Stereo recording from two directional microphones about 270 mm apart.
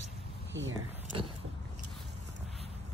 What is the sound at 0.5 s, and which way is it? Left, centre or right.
Speech, right.